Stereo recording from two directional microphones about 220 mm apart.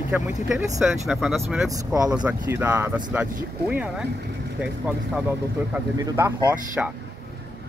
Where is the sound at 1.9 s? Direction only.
15° right (ahead or behind).